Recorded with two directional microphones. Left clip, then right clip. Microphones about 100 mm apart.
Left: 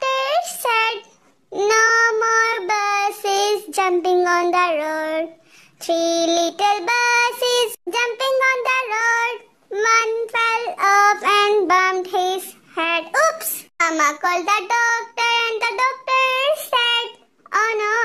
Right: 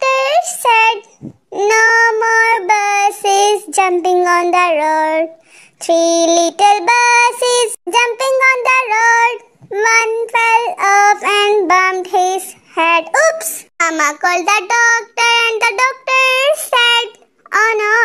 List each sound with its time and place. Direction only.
0.0 s child singing: 30° right (ahead or behind)